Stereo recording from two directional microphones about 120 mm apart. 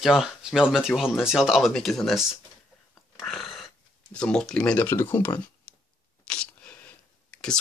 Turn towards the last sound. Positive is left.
turn(degrees=5)  # may be behind; listen again after turning